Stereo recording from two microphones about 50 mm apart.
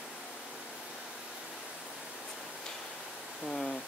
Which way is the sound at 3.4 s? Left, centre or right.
Centre.